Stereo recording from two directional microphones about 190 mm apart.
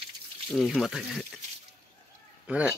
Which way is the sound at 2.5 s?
5° right (ahead or behind).